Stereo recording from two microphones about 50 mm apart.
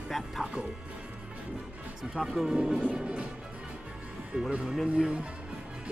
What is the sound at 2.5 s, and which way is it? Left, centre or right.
Speech, centre.